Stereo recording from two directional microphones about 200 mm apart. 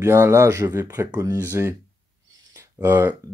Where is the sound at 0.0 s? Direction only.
15° right (ahead or behind).